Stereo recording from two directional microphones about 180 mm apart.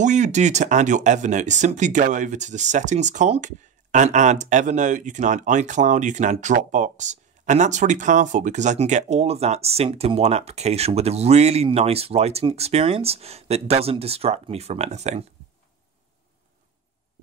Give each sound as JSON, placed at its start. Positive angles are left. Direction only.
{"t": 0.0, "sound": "speech", "side_deg": -40}